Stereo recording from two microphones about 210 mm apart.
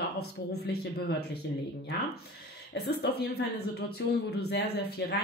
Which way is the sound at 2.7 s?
50° left (ahead or behind).